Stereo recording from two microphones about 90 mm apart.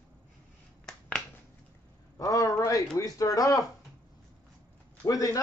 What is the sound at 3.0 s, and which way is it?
Speech, 40° left (ahead or behind).